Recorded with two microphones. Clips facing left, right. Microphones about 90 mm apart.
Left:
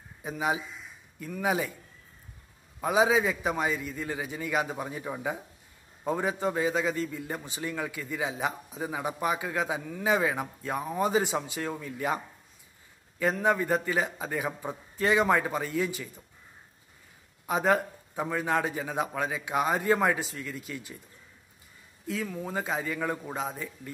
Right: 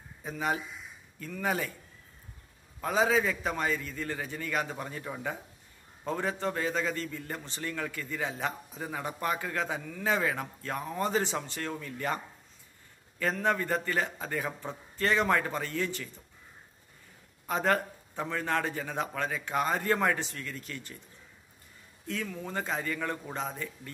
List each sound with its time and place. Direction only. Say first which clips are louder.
0.2 s a man's voice: left 2 dB; 10° left (ahead or behind)
2.8 s a man's voice: left 3 dB; 10° left (ahead or behind)
13.2 s a man's voice: left 3 dB; 10° left (ahead or behind)
17.5 s a man's voice: left 3 dB; 5° left (ahead or behind)
22.0 s a man's voice: left 3 dB; 5° left (ahead or behind)